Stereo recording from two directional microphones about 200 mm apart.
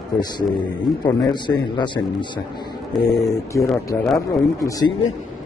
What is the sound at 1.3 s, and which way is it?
A man's voice, 20° left (ahead or behind).